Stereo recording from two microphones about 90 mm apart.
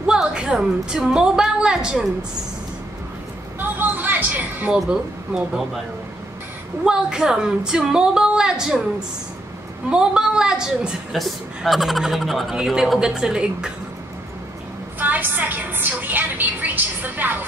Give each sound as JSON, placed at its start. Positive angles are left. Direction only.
{"t": 0.0, "sound": "a woman's voice", "side_deg": -10}
{"t": 3.5, "sound": "a sound", "side_deg": -20}
{"t": 4.7, "sound": "a woman's voice", "side_deg": -5}
{"t": 6.8, "sound": "a woman's voice", "side_deg": -10}
{"t": 9.8, "sound": "a woman's voice", "side_deg": -10}
{"t": 15.0, "sound": "a woman's voice", "side_deg": -20}